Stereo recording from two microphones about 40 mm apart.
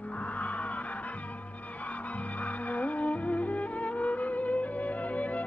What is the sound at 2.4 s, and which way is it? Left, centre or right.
Music, left.